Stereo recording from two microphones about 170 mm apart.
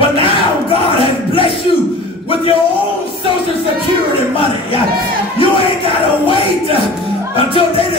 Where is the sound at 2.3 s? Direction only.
35° left (ahead or behind).